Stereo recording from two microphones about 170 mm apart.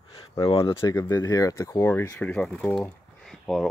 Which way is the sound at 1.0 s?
15° left (ahead or behind).